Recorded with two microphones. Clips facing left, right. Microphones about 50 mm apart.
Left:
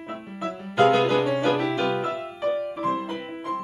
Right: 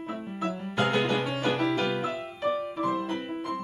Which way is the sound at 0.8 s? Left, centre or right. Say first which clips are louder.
Left 7 dB; centre.